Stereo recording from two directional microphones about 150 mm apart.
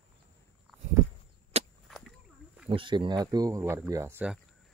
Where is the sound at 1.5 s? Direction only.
45° right (ahead or behind).